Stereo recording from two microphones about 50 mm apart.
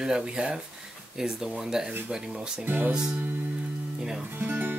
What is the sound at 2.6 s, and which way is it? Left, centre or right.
Speech, right.